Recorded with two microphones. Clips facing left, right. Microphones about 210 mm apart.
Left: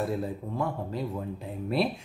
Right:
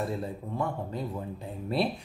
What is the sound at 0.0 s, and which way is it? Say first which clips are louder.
Speech: left 2 dB; centre (ahead or behind).